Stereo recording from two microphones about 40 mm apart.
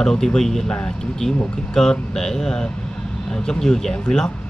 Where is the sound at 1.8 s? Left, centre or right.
Centre.